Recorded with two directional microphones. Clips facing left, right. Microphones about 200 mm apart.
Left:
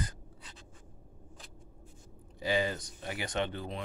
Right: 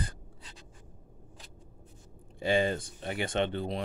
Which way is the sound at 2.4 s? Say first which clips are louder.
Right 4 dB; 25° right (ahead or behind).